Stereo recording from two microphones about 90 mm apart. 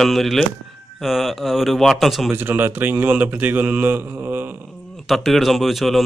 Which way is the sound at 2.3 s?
20° right (ahead or behind).